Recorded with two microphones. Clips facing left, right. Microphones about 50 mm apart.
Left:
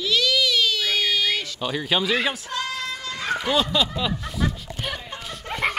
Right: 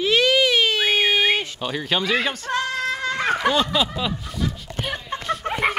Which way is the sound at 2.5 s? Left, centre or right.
Right.